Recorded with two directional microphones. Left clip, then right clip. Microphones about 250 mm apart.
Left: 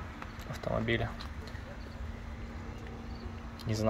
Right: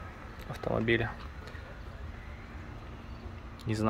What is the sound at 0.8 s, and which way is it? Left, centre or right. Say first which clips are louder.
Speech: right 6 dB; centre.